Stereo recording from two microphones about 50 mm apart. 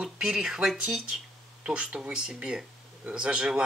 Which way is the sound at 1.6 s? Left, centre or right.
Right.